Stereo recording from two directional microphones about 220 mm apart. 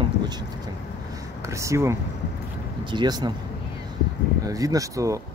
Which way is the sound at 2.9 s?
20° right (ahead or behind).